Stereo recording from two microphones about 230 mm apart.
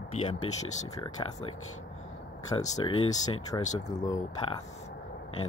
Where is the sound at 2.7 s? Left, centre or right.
Centre.